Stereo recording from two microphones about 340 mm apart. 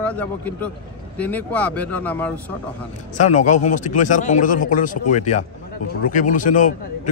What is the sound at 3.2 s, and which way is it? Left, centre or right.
Speech, left.